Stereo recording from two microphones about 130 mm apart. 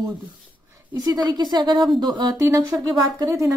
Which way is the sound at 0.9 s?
30° right (ahead or behind).